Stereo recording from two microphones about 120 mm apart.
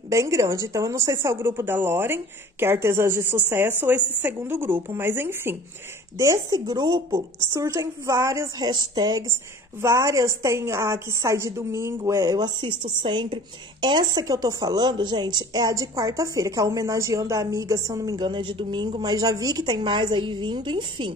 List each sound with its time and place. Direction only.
0.1 s a woman's voice: 25° right (ahead or behind)
9.3 s a woman's voice: 25° right (ahead or behind); by 21.1 s 45° right (ahead or behind)